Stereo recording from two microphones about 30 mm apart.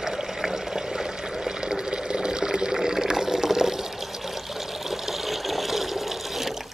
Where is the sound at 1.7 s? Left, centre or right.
Right.